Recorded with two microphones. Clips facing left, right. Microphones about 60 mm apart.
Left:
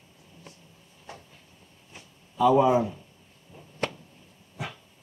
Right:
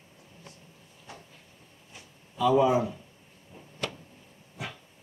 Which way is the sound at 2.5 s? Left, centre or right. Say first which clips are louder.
Left 2 dB; centre.